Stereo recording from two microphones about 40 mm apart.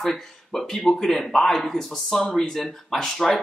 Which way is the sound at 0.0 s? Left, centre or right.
Centre.